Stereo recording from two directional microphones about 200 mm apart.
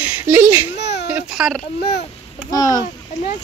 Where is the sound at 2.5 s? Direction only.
15° left (ahead or behind).